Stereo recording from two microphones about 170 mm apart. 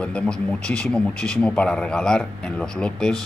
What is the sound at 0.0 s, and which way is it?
Speech, 5° left (ahead or behind).